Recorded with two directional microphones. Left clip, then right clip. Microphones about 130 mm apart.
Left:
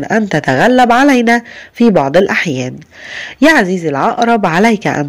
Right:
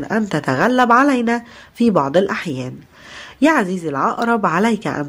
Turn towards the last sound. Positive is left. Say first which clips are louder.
# left 7 dB
turn(degrees=25)  # may be behind; listen again after turning